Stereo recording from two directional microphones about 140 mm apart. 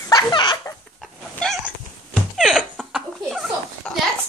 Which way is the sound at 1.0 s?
Centre (ahead or behind).